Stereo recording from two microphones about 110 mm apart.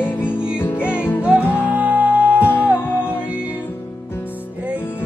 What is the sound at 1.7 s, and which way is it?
Music, 15° right (ahead or behind).